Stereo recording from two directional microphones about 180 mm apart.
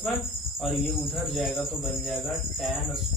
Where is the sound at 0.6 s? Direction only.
Centre (ahead or behind).